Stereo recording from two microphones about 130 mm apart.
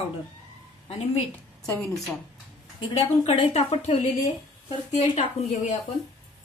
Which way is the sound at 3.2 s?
55° left (ahead or behind).